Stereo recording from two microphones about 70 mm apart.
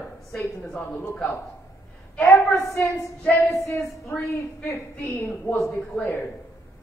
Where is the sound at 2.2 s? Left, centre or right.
Left.